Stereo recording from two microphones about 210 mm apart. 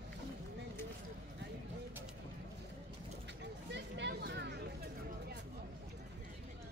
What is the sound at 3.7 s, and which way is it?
Vehicle, 50° right (ahead or behind).